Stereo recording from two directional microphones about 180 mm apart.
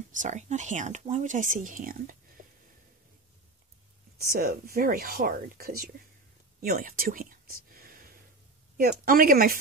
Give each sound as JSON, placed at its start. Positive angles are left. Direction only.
{"t": 0.1, "sound": "speech", "side_deg": -45}
{"t": 2.4, "sound": "a sound", "side_deg": -45}
{"t": 4.2, "sound": "speech", "side_deg": -55}